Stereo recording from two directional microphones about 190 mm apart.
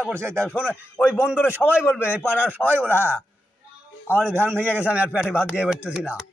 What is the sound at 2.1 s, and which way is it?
Speech, 10° right (ahead or behind).